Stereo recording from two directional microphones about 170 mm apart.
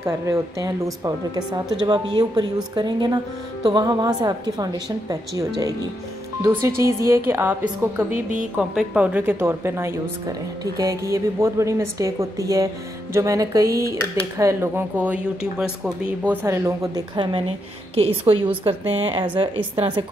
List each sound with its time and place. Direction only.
0.0 s a woman's voice: 20° right (ahead or behind)
6.4 s speech: 15° right (ahead or behind)
8.1 s a woman's voice: 50° right (ahead or behind)
8.5 s a woman's voice: 5° right (ahead or behind)
16.4 s a woman's voice: 15° right (ahead or behind)